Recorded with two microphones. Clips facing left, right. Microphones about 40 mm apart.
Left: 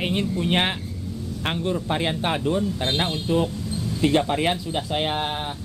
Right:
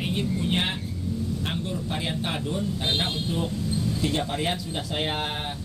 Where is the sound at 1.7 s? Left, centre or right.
Left.